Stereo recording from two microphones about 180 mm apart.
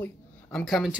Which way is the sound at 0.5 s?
Centre (ahead or behind).